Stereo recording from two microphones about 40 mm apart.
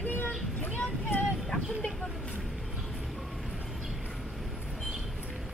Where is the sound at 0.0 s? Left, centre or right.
Left.